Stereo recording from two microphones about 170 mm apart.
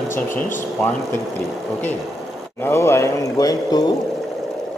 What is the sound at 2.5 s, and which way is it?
Speech, 15° left (ahead or behind).